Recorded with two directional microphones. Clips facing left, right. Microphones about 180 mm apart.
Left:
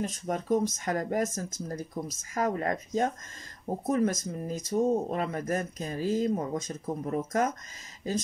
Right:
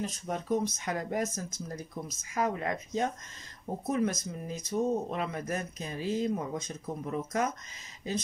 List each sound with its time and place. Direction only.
0.0 s speech: 45° left (ahead or behind)